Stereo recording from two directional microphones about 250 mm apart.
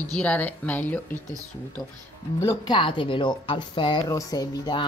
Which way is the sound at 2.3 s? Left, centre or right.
Centre.